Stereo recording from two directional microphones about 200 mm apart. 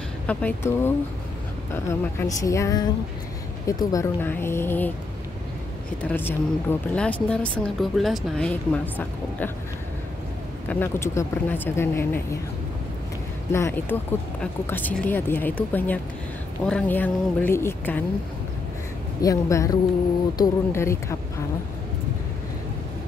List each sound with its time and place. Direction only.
0.3 s speech: 5° left (ahead or behind)
6.0 s a woman's voice: 10° left (ahead or behind)
10.7 s speech: 10° left (ahead or behind)
13.5 s speech: 10° left (ahead or behind)
19.2 s speech: 15° left (ahead or behind)